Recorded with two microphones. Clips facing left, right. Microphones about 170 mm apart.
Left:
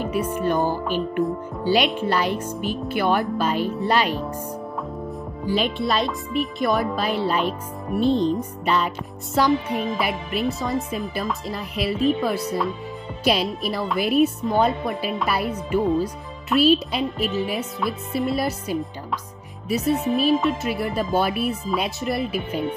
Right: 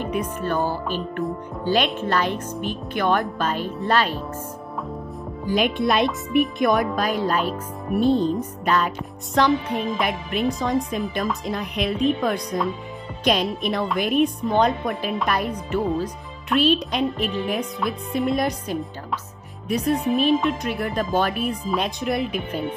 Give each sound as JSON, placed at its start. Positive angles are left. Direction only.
{"t": 0.0, "sound": "speech", "side_deg": 5}
{"t": 5.5, "sound": "speech", "side_deg": -15}
{"t": 6.6, "sound": "speech", "side_deg": 0}
{"t": 8.0, "sound": "speech", "side_deg": -10}
{"t": 8.4, "sound": "speech", "side_deg": 10}